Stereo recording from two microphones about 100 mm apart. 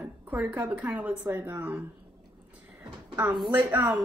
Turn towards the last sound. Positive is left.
turn(degrees=-20)  # may be behind; listen again after turning